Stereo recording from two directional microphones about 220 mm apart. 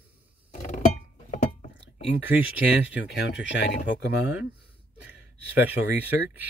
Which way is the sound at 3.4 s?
55° left (ahead or behind).